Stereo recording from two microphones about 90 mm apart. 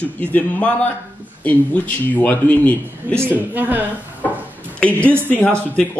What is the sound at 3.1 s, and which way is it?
Speech, 20° right (ahead or behind).